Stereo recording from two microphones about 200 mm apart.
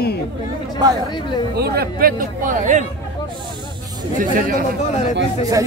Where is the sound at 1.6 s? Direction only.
50° right (ahead or behind).